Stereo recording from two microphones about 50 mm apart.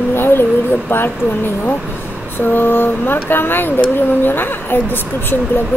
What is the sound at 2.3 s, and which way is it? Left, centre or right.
Speech, left.